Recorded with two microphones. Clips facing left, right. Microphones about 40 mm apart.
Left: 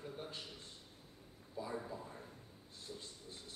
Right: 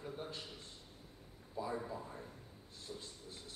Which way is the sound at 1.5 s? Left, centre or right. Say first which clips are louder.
Right 3 dB; centre.